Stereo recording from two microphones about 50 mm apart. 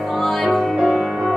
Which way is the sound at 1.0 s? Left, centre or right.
Centre.